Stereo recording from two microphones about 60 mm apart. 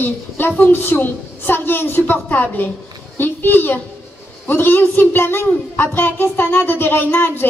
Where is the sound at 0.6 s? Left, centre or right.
Left.